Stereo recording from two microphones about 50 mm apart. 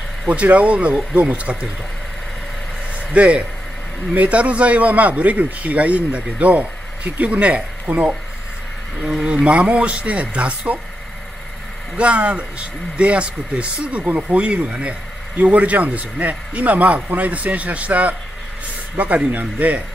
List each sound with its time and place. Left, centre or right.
0.3 s speech: right
3.1 s speech: right
9.2 s speech: right
12.0 s speech: right
14.0 s speech: right
14.4 s speech: right